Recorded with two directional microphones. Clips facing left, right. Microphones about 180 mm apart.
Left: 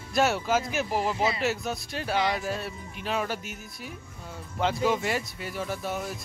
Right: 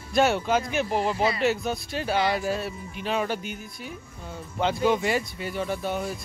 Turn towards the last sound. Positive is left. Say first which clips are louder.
# right 3 dB
turn(degrees=0)  # may be behind; listen again after turning